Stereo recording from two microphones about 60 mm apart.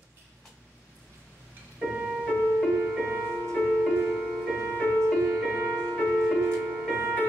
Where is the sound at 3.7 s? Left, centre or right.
Centre.